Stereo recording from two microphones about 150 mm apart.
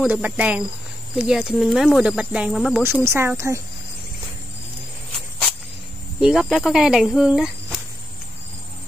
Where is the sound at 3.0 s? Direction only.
15° right (ahead or behind).